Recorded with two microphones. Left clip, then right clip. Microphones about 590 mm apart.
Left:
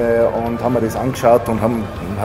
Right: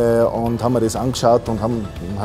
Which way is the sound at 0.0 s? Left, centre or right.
Right.